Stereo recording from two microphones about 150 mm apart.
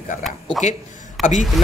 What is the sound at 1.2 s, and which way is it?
Speech, 55° left (ahead or behind).